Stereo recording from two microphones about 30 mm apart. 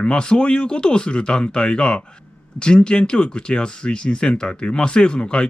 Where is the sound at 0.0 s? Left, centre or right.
Left.